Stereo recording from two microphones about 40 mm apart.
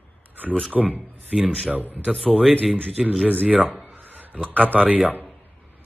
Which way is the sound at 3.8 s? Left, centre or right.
Right.